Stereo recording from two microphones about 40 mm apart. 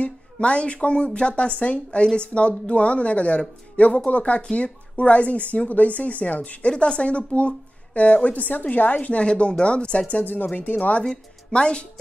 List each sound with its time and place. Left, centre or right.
0.0 s speech: left
9.2 s speech: left
10.2 s speech: left
11.5 s speech: left